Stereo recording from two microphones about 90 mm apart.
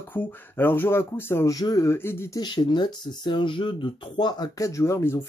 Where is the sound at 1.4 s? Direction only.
45° left (ahead or behind).